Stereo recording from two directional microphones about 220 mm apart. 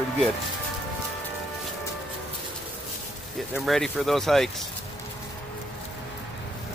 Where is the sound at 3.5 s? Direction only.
Centre (ahead or behind).